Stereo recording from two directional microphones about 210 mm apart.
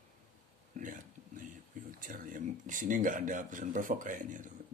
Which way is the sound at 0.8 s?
40° right (ahead or behind).